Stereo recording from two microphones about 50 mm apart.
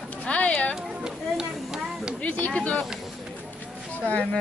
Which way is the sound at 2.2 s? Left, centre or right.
Left.